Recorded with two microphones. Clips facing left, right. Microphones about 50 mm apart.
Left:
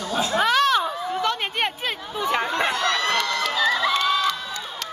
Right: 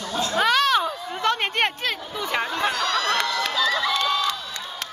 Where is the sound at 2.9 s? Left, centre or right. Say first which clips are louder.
Left 1 dB; left.